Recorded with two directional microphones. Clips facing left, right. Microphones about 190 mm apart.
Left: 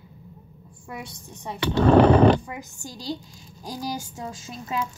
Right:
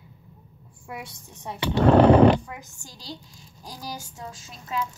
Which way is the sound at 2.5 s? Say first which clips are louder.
Left 5 dB; 15° left (ahead or behind).